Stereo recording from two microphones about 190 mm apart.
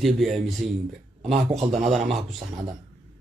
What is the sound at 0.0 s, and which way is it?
Speech, centre (ahead or behind).